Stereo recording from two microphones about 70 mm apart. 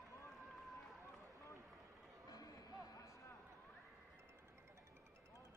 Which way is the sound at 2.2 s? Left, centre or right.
Left.